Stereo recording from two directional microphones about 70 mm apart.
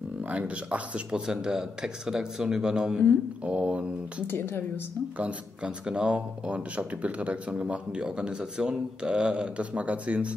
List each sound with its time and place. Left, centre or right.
0.3 s speech: centre
4.3 s a woman's voice: left
5.1 s speech: centre